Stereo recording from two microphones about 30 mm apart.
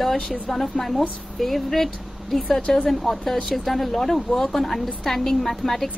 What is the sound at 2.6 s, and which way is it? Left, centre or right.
Speech, left.